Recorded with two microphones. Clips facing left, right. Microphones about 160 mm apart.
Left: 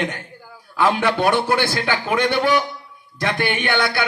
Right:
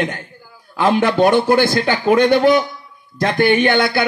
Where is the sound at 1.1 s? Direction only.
40° right (ahead or behind).